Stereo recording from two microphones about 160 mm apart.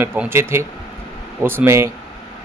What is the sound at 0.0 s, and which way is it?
A man's voice, 15° right (ahead or behind).